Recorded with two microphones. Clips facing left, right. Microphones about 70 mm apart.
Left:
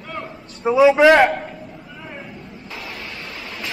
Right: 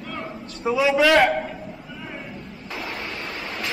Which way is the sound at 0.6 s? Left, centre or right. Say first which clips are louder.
Left 7 dB; left.